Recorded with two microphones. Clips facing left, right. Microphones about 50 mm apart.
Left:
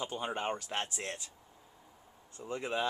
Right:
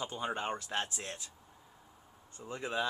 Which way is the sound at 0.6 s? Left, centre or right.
Left.